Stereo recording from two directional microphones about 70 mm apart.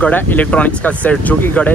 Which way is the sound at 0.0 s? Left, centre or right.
Left.